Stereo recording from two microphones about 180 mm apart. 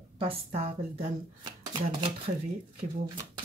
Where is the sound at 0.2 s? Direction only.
35° right (ahead or behind).